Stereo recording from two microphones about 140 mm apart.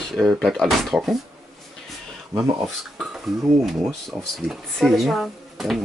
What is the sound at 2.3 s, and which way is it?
Speech, 20° right (ahead or behind).